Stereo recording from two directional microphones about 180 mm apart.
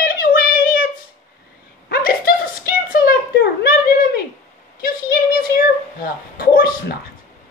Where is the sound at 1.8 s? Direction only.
55° left (ahead or behind).